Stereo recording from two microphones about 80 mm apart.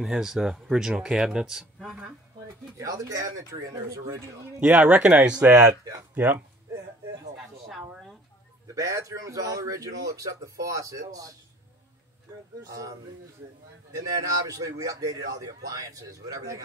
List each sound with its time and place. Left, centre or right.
0.0 s speech: centre
2.4 s a man's voice: right
4.6 s speech: centre
5.5 s a man's voice: right
6.1 s speech: right
7.3 s a sound: centre
8.7 s a man's voice: right
13.9 s a man's voice: right